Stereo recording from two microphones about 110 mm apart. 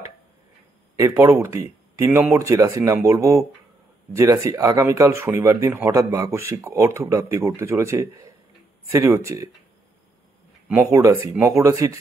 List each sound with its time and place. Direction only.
0.9 s speech: 30° right (ahead or behind)
10.9 s speech: 30° right (ahead or behind)